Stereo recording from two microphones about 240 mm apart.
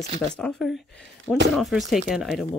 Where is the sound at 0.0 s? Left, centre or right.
Right.